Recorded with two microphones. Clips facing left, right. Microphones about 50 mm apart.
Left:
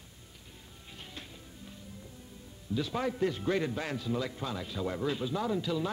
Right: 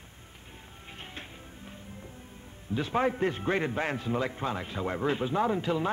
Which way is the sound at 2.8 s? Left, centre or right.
Right.